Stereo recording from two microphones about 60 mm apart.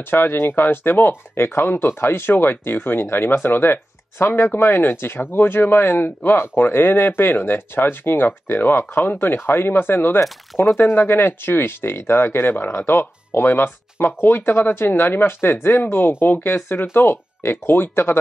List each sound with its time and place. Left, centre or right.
0.1 s speech: left